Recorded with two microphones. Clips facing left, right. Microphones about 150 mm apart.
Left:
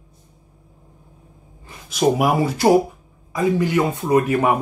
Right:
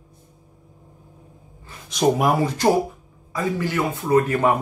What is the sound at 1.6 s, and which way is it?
A man's voice, 10° left (ahead or behind).